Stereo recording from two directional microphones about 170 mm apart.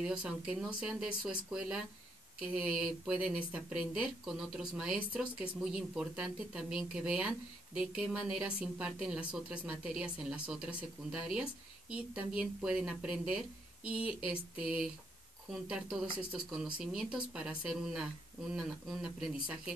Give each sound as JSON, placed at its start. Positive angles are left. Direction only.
{"t": 0.0, "sound": "speech", "side_deg": -5}